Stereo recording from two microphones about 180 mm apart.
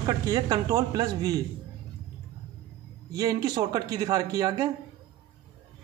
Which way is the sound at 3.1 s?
20° right (ahead or behind).